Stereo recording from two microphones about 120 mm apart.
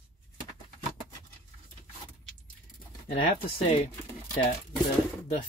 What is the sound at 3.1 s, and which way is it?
Speech, 50° left (ahead or behind).